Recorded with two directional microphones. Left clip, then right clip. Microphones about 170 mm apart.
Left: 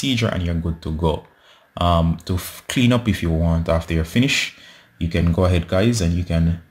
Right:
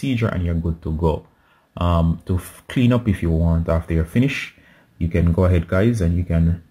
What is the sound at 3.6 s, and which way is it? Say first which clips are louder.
Speech: left 1 dB; 20° right (ahead or behind).